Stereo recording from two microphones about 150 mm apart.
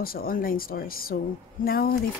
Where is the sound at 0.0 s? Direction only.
80° left.